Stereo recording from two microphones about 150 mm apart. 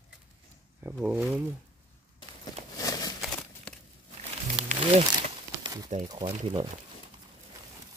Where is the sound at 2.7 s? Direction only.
25° left (ahead or behind).